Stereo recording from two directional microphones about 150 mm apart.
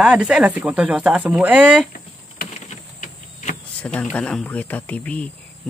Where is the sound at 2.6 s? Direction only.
55° left (ahead or behind).